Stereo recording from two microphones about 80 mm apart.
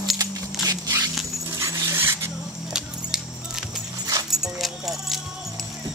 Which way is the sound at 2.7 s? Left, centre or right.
Centre.